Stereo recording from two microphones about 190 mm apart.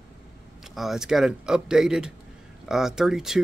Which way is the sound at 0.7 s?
Centre (ahead or behind).